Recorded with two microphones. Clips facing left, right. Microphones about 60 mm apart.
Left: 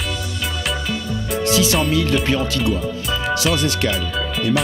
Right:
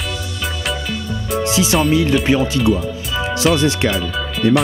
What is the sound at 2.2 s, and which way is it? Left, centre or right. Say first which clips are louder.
Speech: right 4 dB; centre.